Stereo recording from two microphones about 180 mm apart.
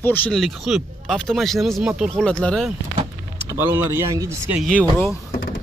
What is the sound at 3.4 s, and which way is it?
Speech, 15° right (ahead or behind).